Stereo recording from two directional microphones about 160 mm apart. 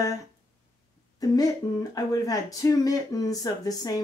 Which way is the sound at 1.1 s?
25° left (ahead or behind).